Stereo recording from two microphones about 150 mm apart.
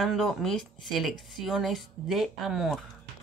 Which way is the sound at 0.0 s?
Centre (ahead or behind).